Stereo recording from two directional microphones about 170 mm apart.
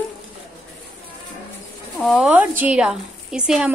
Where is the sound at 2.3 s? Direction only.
10° right (ahead or behind).